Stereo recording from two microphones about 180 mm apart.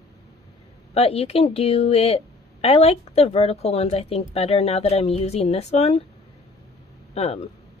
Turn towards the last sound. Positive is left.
turn(degrees=35)  # may be behind; listen again after turning